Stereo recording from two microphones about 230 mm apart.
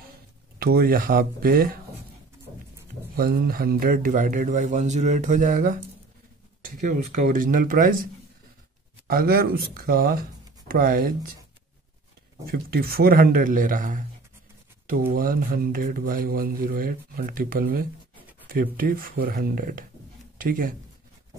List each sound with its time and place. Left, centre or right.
0.6 s speech: right
3.2 s speech: right
6.8 s speech: right
12.4 s speech: right
15.1 s speech: right